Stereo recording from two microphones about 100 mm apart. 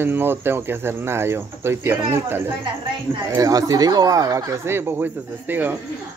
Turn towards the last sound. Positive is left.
turn(degrees=-20)  # may be behind; listen again after turning